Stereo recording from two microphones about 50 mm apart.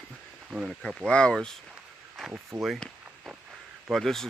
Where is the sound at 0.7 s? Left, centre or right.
Centre.